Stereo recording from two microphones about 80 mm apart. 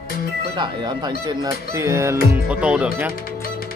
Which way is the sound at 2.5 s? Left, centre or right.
Centre.